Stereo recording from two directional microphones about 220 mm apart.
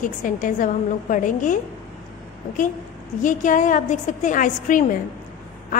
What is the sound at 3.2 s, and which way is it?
A woman's voice, 35° left (ahead or behind).